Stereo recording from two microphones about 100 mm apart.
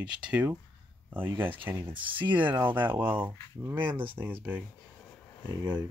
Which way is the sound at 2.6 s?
20° right (ahead or behind).